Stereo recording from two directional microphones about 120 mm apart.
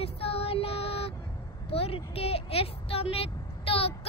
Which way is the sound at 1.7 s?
55° left (ahead or behind).